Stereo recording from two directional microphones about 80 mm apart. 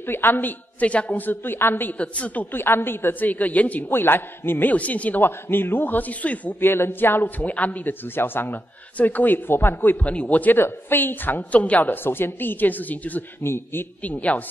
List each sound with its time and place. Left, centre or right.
0.0 s a woman's voice: left
2.0 s a woman's voice: centre
2.5 s a woman's voice: left
14.0 s a woman's voice: centre